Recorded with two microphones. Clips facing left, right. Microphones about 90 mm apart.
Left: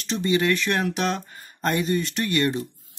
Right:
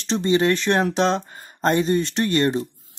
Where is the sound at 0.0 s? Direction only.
30° right (ahead or behind).